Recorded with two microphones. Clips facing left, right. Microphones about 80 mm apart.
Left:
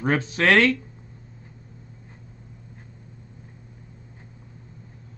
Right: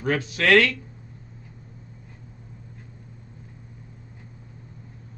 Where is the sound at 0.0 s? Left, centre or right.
Left.